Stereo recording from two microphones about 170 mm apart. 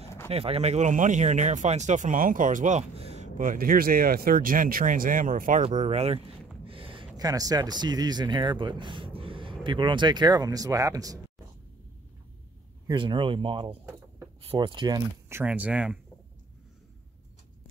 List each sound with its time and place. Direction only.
0.3 s speech: 35° right (ahead or behind)
3.3 s speech: 55° right (ahead or behind)
5.6 s speech: 40° right (ahead or behind)
6.6 s a sound: 30° right (ahead or behind)
7.2 s speech: 20° right (ahead or behind)
12.8 s speech: 30° right (ahead or behind)
15.2 s speech: 10° right (ahead or behind)